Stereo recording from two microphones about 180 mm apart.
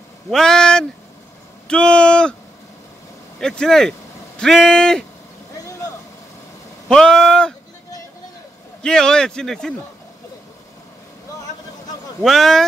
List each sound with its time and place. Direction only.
0.3 s a man's voice: 5° left (ahead or behind)
3.3 s a man's voice: 5° left (ahead or behind)
5.6 s vehicle: 20° left (ahead or behind)
6.9 s a man's voice: 5° left (ahead or behind)
8.8 s a man's voice: 5° left (ahead or behind)
12.2 s a man's voice: centre (ahead or behind)